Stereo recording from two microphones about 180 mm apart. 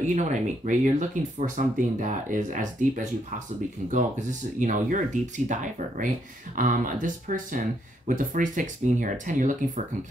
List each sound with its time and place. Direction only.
0.0 s speech: 40° right (ahead or behind)